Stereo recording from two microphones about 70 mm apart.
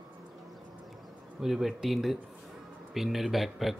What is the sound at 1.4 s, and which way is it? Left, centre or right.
Speech, centre.